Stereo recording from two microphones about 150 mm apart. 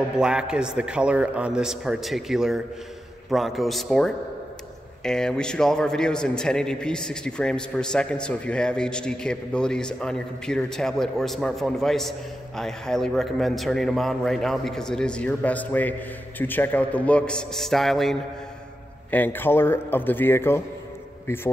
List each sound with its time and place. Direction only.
0.2 s a man's voice: 5° right (ahead or behind); by 21.4 s 15° left (ahead or behind)